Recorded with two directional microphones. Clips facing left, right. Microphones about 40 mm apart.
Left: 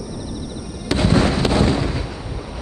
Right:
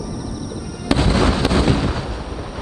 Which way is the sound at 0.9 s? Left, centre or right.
Centre.